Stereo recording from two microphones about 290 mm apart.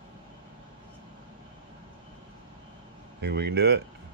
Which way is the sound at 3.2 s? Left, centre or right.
Right.